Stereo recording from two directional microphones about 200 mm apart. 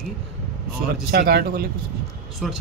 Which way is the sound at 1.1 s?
55° right (ahead or behind).